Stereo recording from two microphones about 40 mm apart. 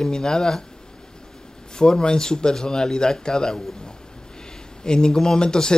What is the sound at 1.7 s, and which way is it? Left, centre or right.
Speech, centre.